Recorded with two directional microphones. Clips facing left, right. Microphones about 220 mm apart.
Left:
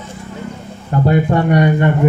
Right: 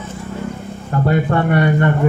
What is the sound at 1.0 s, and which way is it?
Speech, 15° left (ahead or behind).